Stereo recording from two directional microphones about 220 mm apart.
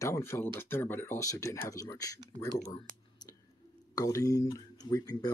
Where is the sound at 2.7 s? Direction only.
20° left (ahead or behind).